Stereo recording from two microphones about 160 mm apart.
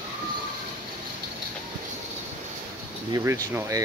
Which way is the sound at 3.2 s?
15° right (ahead or behind).